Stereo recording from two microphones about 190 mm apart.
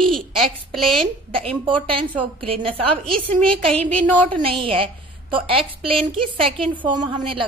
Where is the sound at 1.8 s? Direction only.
30° right (ahead or behind).